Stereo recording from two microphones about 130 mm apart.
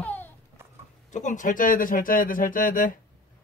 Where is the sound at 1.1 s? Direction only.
70° left (ahead or behind).